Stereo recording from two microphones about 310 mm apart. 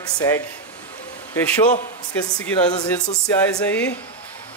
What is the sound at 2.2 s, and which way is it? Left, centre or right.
Speech, centre.